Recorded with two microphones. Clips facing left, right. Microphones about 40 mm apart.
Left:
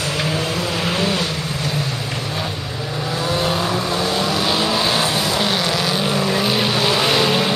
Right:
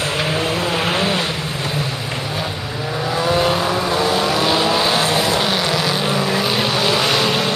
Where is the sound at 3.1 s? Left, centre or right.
Centre.